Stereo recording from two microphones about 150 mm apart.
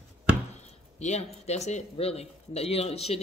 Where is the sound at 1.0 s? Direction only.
45° left (ahead or behind).